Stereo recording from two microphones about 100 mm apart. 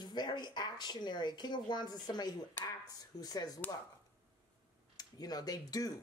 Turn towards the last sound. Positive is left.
turn(degrees=40)  # may be behind; listen again after turning